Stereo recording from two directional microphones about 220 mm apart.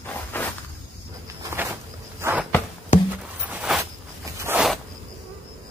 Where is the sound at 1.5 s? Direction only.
10° right (ahead or behind).